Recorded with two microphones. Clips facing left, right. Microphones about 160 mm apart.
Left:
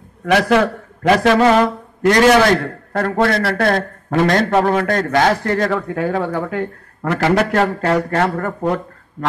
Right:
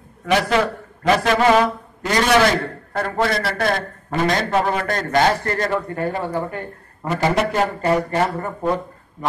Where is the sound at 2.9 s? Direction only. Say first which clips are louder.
Left 4 dB; 75° left (ahead or behind).